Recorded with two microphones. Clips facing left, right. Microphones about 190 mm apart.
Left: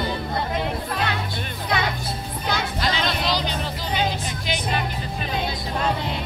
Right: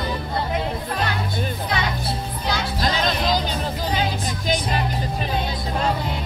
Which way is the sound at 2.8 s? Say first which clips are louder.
Right 4 dB; 45° right (ahead or behind).